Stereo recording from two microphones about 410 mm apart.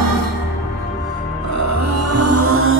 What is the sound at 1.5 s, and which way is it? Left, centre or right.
Music, right.